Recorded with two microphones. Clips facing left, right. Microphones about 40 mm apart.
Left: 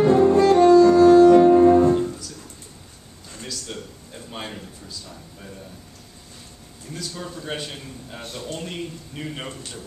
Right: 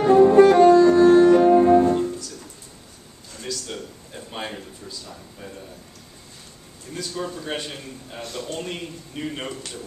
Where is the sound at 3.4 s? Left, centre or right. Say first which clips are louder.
Right 2 dB; centre.